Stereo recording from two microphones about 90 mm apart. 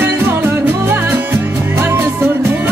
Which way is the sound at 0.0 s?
25° right (ahead or behind).